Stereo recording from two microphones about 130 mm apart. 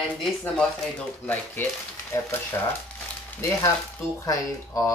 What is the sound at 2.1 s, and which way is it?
Speech, 20° left (ahead or behind).